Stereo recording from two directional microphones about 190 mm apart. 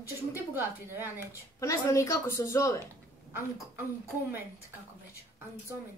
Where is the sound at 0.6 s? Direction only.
10° right (ahead or behind).